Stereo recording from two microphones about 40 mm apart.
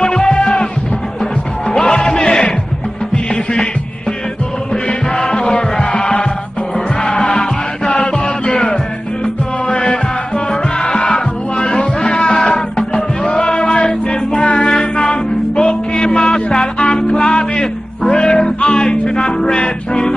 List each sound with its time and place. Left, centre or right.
0.0 s music: centre
1.7 s music: left
4.8 s music: left
9.7 s music: left
14.4 s music: left